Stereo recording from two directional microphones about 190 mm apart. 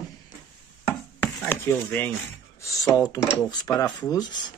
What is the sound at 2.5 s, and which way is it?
Speech, 15° left (ahead or behind).